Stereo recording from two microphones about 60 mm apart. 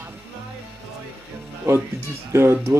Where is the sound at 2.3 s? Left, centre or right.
Right.